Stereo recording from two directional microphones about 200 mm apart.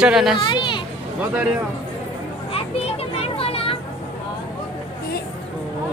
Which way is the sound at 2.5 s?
30° left (ahead or behind).